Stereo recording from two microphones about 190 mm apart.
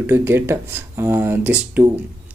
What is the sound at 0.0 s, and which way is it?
Speech, 10° right (ahead or behind).